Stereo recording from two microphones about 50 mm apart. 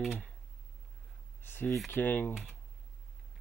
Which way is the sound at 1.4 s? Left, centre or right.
Left.